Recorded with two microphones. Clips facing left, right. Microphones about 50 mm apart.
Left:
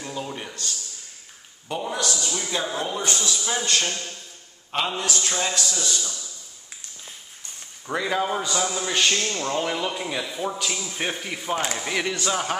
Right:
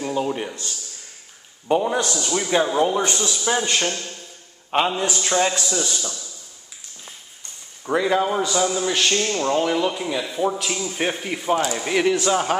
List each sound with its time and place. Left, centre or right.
0.0 s a sound: right
1.7 s a man's voice: right
7.8 s a man's voice: centre
9.2 s speech: centre
9.6 s a man's voice: centre